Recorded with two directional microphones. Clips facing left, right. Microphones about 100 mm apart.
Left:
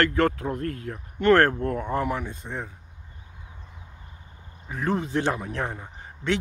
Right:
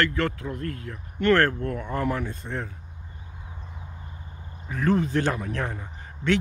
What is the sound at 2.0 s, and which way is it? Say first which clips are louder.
Speech: right 1 dB; 15° left (ahead or behind).